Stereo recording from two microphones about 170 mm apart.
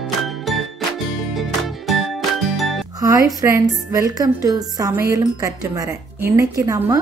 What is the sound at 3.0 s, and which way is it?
Speech, 20° right (ahead or behind).